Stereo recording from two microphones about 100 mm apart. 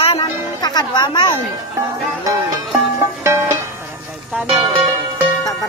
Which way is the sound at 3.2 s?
25° right (ahead or behind).